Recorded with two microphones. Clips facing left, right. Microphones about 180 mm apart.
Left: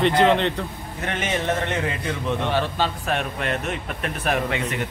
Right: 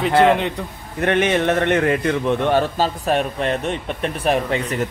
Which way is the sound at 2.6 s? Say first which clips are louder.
Right 4 dB; 40° right (ahead or behind).